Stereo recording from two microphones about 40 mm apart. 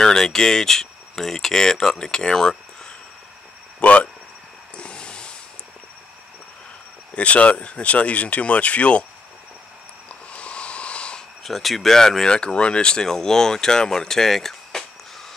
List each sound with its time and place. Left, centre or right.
0.0 s speech: centre
3.8 s speech: left
4.7 s a sound: left
7.2 s speech: left
10.0 s a sound: left
11.4 s speech: centre
12.3 s speech: left